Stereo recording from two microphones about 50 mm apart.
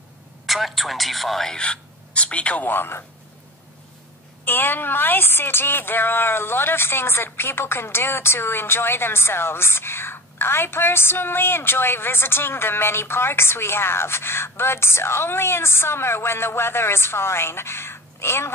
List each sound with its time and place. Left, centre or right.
0.5 s speech: centre
1.5 s speech: left
2.7 s a woman's voice: left
4.5 s a woman's voice: left